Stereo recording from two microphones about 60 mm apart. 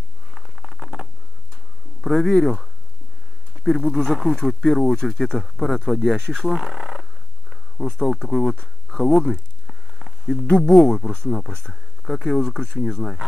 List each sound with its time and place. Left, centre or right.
0.3 s a sound: centre
3.6 s speech: centre
6.2 s purr: centre
10.5 s speech: centre